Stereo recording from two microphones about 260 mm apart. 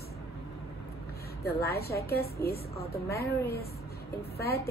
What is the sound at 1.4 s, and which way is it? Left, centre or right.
A woman's voice, left.